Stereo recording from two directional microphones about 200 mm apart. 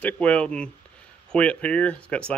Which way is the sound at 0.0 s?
5° left (ahead or behind).